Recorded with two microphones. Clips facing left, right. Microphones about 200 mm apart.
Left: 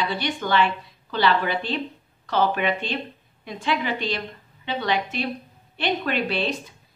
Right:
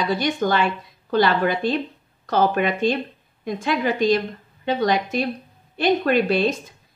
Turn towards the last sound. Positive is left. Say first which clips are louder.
# right 6 dB
turn(degrees=-45)  # may be behind; listen again after turning